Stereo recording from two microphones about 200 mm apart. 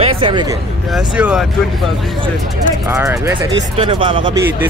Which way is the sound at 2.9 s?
15° right (ahead or behind).